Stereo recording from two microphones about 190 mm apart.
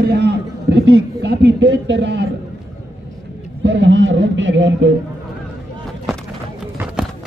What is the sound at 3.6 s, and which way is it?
A man's voice, 70° right (ahead or behind).